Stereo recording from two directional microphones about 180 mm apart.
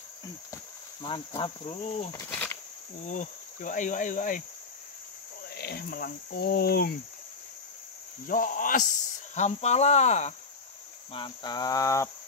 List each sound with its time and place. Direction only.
1.0 s cricket: 25° left (ahead or behind)
2.2 s insect: 10° left (ahead or behind)
3.1 s cricket: 45° left (ahead or behind)
5.5 s speech: 60° left (ahead or behind)
8.3 s cricket: 50° left (ahead or behind)
11.1 s cricket: 25° left (ahead or behind)